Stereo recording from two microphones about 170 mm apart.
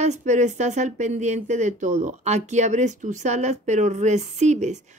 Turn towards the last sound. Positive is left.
turn(degrees=-45)  # may be behind; listen again after turning